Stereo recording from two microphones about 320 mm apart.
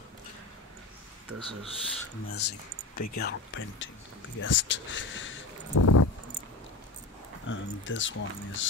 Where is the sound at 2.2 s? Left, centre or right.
Left.